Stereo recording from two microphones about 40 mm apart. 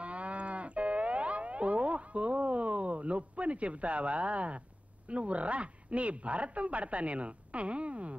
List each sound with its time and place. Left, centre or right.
0.0 s livestock: right